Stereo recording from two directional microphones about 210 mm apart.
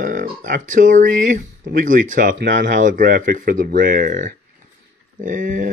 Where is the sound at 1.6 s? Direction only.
45° right (ahead or behind).